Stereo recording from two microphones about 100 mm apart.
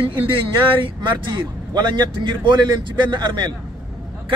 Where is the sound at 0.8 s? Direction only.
50° right (ahead or behind).